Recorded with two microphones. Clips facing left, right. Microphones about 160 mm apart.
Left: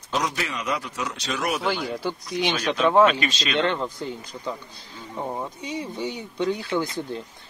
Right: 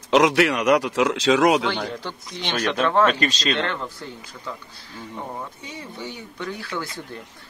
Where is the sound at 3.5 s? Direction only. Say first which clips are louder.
Left 2 dB; 20° left (ahead or behind).